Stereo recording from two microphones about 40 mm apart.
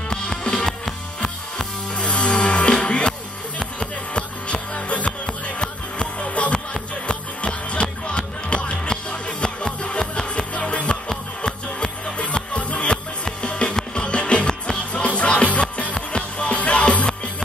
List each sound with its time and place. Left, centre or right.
0.4 s music: left
0.7 s music: centre
2.0 s music: left
4.7 s music: left
9.9 s music: left